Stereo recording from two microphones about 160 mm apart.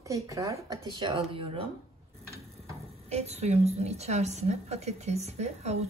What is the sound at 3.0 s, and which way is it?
A woman's voice, 40° right (ahead or behind).